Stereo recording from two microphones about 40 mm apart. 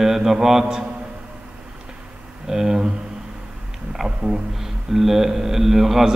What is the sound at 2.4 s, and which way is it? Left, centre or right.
Speech, centre.